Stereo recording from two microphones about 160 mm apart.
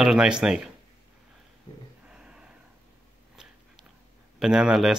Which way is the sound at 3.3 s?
5° right (ahead or behind).